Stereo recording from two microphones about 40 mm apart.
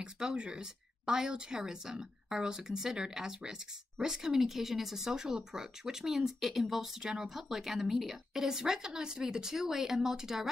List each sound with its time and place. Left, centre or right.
0.0 s speech: right